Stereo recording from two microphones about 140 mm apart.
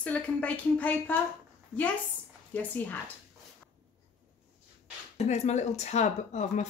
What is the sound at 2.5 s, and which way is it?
Speech, 15° left (ahead or behind).